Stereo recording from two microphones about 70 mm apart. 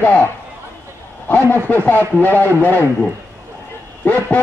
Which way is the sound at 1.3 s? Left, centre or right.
Left.